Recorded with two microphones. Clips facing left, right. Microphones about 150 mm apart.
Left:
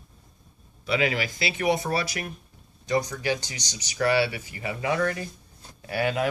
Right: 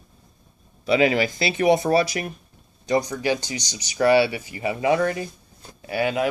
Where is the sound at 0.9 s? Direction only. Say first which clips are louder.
Right 7 dB; 25° right (ahead or behind).